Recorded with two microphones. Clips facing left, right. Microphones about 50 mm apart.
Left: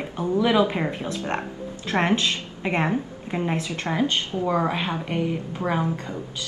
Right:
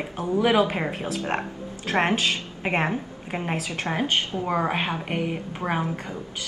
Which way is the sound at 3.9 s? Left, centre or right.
Right.